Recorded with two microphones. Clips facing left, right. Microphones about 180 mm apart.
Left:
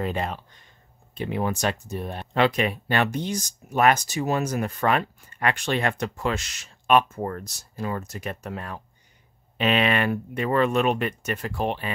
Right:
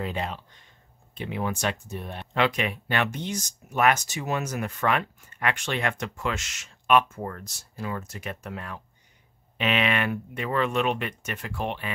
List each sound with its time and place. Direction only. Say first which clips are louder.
0.0 s speech: left 3 dB; 45° left (ahead or behind)